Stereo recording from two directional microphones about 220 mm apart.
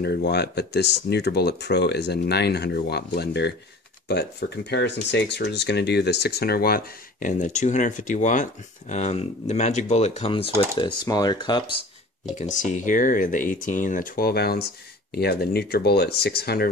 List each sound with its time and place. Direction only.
0.0 s speech: 50° left (ahead or behind); by 11.7 s 20° left (ahead or behind)
12.4 s speech: 35° left (ahead or behind)